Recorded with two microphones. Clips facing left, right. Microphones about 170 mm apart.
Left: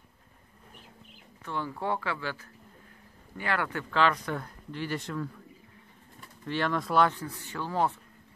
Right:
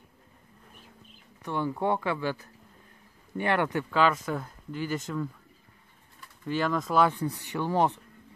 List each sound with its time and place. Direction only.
1.4 s speech: 15° right (ahead or behind)
3.9 s speech: 5° right (ahead or behind)
6.4 s speech: 5° right (ahead or behind)
7.1 s speech: 15° right (ahead or behind)